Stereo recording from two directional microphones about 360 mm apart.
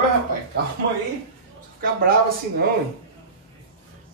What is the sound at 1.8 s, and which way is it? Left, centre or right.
Speech, right.